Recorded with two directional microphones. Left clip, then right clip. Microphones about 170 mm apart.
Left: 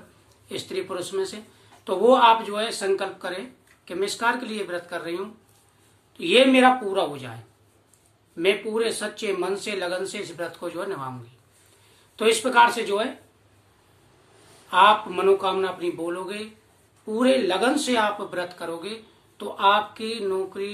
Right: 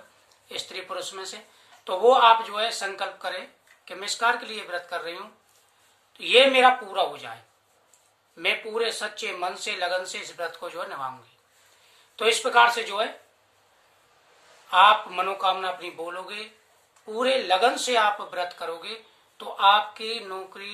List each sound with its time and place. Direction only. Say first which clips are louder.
0.5 s speech: left 4 dB; 5° right (ahead or behind)
8.4 s speech: left 3 dB; 5° right (ahead or behind)
12.2 s speech: left 1 dB; 5° right (ahead or behind)
14.7 s speech: even; 5° right (ahead or behind)